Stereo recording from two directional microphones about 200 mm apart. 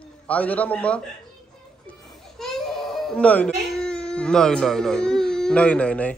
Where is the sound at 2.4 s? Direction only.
Centre (ahead or behind).